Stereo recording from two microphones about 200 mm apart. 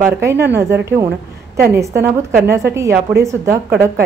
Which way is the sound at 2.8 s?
15° right (ahead or behind).